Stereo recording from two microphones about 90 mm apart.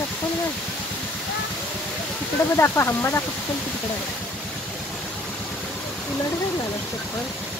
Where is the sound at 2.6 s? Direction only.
30° left (ahead or behind).